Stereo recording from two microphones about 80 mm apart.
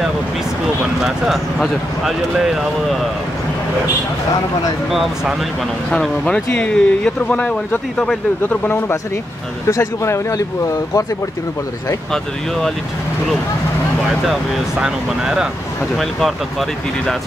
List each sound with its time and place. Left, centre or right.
1.0 s speech: centre
4.9 s speech: centre
5.9 s speech: centre
8.4 s speech: left
12.1 s speech: centre
14.2 s speech: centre